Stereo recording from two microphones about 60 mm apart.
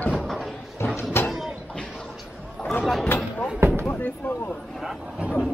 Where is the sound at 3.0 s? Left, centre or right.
Left.